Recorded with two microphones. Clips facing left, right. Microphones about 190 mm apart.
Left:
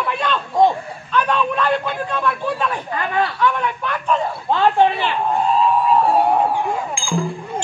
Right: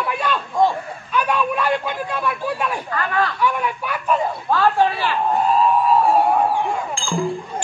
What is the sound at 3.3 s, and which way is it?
Speech, 10° right (ahead or behind).